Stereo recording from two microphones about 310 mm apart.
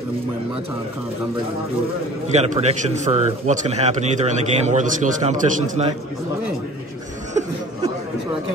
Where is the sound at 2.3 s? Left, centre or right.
Right.